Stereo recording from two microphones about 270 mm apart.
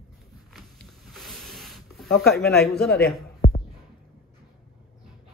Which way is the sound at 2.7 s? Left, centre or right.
Centre.